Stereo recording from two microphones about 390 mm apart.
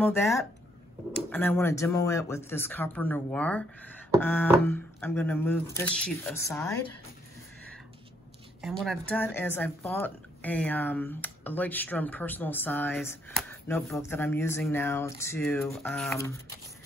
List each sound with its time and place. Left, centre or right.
0.0 s speech: centre
8.5 s speech: centre